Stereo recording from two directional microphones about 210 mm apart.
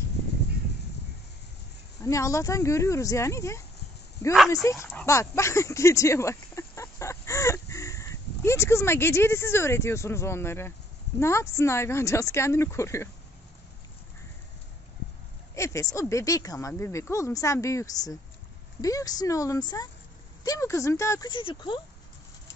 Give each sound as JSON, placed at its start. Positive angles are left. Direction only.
{"t": 2.0, "sound": "speech", "side_deg": 15}
{"t": 4.6, "sound": "speech", "side_deg": 10}
{"t": 15.5, "sound": "speech", "side_deg": 15}